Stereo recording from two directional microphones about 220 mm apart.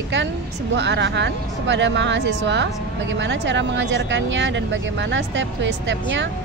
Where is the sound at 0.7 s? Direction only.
55° right (ahead or behind).